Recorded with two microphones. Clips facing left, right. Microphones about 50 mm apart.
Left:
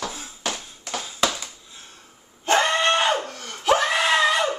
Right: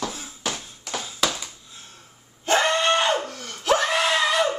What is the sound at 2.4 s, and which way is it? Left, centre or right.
Screaming, centre.